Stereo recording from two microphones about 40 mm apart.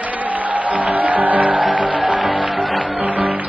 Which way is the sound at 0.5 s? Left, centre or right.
Right.